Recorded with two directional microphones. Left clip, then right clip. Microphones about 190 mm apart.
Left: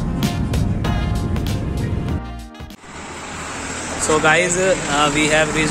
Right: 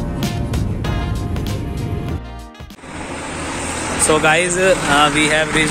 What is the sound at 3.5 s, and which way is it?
Vehicle, 55° left (ahead or behind).